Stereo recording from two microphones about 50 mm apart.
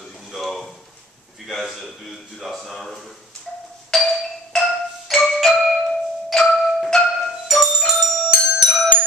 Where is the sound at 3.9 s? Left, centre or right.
Centre.